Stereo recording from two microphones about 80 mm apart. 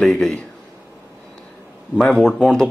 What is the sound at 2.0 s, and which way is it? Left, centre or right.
Speech, centre.